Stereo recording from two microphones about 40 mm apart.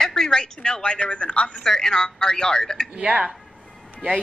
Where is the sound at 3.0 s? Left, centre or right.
Right.